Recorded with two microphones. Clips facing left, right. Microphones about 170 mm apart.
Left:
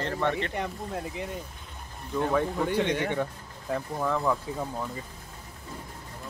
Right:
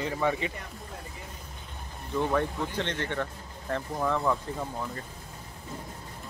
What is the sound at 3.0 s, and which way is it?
Speech, 10° left (ahead or behind).